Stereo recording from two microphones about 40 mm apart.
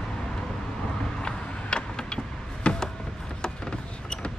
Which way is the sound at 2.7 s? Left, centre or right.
Left.